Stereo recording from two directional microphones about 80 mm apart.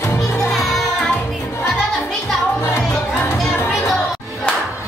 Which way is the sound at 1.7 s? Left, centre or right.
Centre.